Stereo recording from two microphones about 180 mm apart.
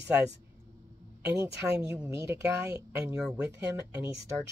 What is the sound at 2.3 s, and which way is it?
Speech, 15° right (ahead or behind).